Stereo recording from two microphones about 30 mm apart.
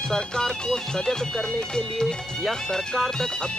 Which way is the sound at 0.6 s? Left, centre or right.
Left.